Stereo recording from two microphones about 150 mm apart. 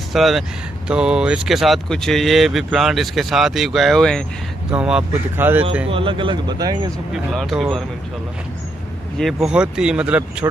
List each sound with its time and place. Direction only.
0.1 s speech: centre (ahead or behind)
5.9 s speech: 35° right (ahead or behind)
7.3 s speech: centre (ahead or behind)
9.2 s speech: 5° right (ahead or behind)
10.4 s speech: 20° right (ahead or behind)